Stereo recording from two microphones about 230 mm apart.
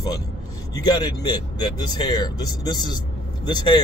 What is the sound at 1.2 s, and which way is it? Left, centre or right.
Speech, centre.